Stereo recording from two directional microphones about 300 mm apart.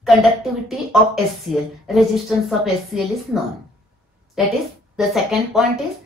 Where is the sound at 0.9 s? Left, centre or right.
Centre.